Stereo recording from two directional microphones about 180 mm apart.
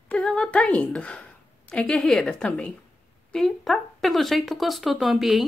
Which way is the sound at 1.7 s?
5° left (ahead or behind).